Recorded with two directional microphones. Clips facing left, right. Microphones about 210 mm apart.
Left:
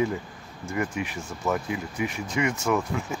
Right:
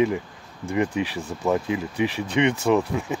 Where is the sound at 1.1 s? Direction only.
35° right (ahead or behind).